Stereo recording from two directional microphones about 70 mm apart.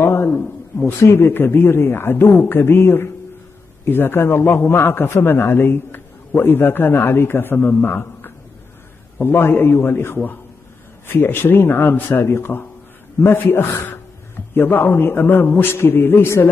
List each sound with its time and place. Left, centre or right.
0.0 s a sound: left
0.4 s a man's voice: left
0.9 s a man's voice: left